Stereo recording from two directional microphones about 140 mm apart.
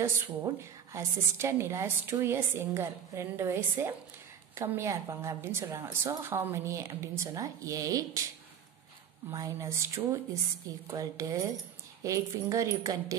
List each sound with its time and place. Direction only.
0.0 s a woman's voice: 20° right (ahead or behind)
9.3 s a woman's voice: 25° right (ahead or behind)